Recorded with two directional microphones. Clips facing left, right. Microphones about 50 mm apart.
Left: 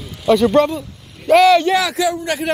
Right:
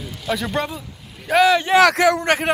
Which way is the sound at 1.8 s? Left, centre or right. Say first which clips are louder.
Right 4 dB; right.